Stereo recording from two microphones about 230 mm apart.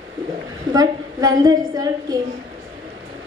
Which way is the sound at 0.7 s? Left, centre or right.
Centre.